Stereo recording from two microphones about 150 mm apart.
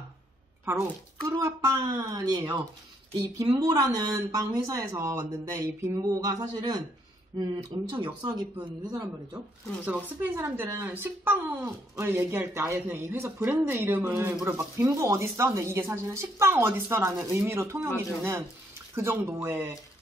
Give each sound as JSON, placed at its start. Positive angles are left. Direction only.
{"t": 1.2, "sound": "speech", "side_deg": -20}
{"t": 9.8, "sound": "speech", "side_deg": -10}